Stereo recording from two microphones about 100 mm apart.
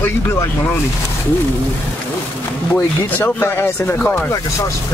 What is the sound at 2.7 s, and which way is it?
Speech, 20° left (ahead or behind).